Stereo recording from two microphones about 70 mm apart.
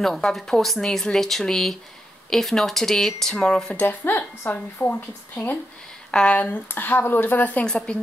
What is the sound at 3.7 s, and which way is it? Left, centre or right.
A woman's voice, left.